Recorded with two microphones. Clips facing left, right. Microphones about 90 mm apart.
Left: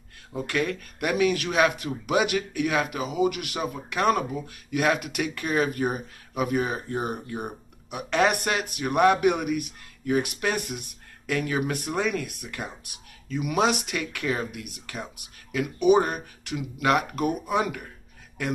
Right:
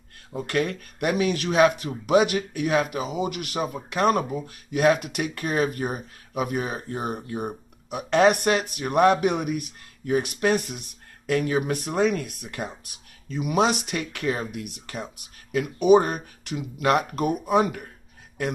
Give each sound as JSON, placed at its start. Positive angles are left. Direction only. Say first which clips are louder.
{"t": 0.5, "sound": "speech", "louder": "right 2 dB", "side_deg": -35}